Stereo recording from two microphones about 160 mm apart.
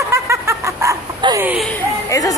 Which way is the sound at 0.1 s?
15° right (ahead or behind).